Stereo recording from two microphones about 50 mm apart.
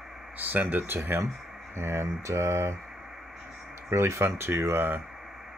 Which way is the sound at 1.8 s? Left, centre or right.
Right.